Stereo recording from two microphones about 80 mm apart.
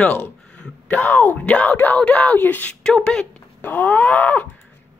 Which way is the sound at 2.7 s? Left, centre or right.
Centre.